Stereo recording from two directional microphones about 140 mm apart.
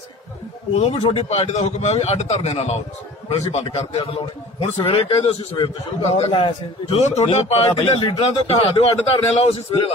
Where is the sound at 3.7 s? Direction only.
40° left (ahead or behind).